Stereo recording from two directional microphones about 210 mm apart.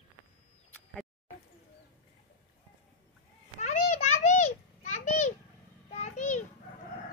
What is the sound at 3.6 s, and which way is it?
Children playing, 35° left (ahead or behind).